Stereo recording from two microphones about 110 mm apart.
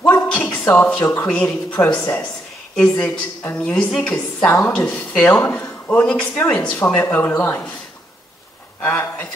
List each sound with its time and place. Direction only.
0.0 s a sound: 15° left (ahead or behind)
0.8 s speech: 10° left (ahead or behind)
8.8 s speech: 20° left (ahead or behind)